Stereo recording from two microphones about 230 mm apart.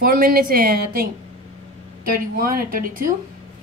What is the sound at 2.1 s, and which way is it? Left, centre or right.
A woman's voice, right.